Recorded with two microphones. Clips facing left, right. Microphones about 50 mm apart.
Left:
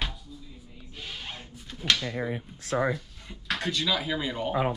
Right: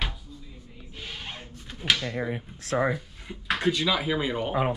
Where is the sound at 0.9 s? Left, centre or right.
Centre.